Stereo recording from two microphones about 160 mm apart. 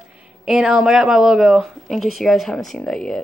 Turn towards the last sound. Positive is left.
turn(degrees=5)  # may be behind; listen again after turning